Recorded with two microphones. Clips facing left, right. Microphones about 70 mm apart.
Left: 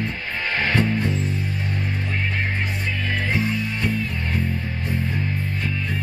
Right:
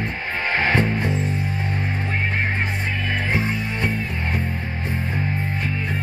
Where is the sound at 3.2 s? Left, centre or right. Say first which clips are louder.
Left 1 dB; right.